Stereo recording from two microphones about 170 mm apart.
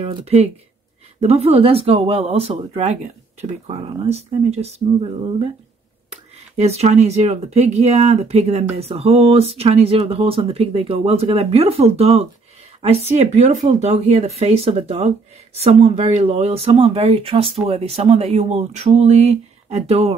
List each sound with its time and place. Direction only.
0.0 s speech: 40° right (ahead or behind)
6.5 s speech: 40° right (ahead or behind)